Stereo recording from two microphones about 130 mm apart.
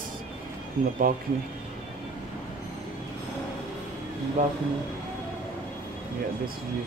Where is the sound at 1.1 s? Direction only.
90° right.